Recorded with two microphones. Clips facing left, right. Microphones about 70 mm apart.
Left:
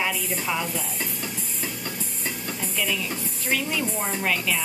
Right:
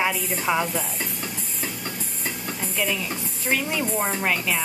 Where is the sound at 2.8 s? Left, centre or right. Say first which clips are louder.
Right 2 dB; centre.